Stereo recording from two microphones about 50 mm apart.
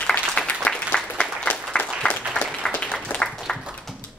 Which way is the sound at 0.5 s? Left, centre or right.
Centre.